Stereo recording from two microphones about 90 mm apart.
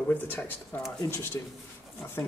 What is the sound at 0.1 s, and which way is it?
Speech, 20° left (ahead or behind).